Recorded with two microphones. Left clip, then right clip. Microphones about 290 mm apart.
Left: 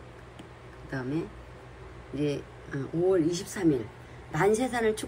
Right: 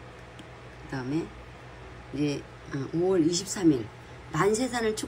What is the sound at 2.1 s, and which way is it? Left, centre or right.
A woman's voice, centre.